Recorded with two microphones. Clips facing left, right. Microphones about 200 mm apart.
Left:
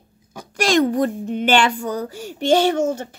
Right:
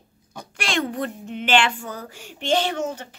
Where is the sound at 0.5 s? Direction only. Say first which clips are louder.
Left 9 dB; 40° left (ahead or behind).